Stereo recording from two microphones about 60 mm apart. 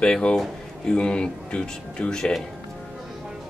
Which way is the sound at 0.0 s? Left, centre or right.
Centre.